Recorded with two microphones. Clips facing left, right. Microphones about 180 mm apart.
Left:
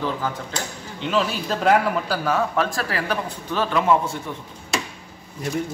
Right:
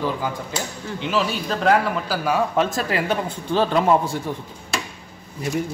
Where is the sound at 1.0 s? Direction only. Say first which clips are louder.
Left 1 dB; centre (ahead or behind).